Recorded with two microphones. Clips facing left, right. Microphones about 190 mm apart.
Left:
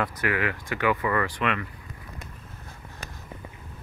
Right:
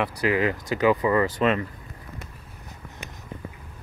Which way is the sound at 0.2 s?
30° right (ahead or behind).